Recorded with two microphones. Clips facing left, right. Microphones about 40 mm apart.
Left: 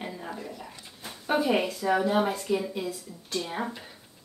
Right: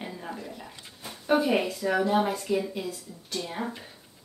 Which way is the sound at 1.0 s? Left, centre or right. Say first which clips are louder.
Right 2 dB; centre.